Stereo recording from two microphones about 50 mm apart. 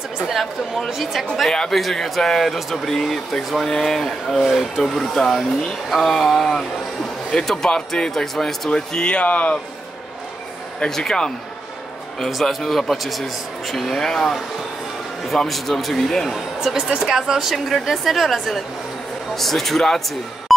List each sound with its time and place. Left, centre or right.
0.3 s speech: centre; by 9.6 s left
10.9 s speech: centre
12.3 s speech: centre